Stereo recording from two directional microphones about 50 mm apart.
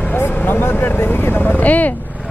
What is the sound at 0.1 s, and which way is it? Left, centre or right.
Speech, left.